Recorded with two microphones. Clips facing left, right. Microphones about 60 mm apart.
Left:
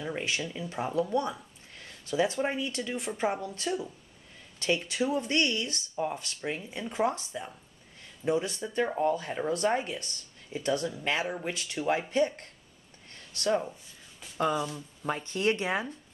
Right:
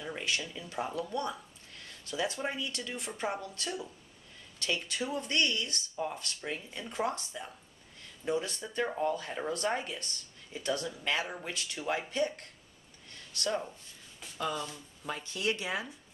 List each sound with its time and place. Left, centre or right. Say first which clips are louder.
0.0 s speech: left 3 dB; centre
4.7 s speech: left 5 dB; centre
13.5 s speech: left 6 dB; centre
15.0 s speech: left 5 dB; left